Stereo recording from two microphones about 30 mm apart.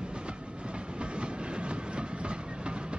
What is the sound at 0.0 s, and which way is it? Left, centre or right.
Train, right.